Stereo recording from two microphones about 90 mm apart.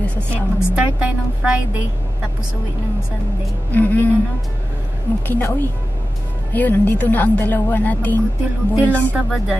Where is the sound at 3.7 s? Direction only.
20° left (ahead or behind).